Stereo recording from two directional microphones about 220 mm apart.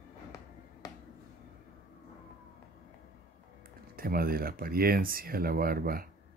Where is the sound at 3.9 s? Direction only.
40° right (ahead or behind).